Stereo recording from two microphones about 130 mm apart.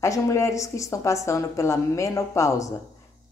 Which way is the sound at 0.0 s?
25° left (ahead or behind).